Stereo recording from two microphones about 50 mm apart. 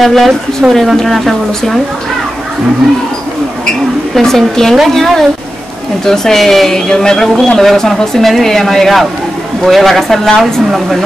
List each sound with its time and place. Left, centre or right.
0.0 s speech: centre
4.1 s speech: centre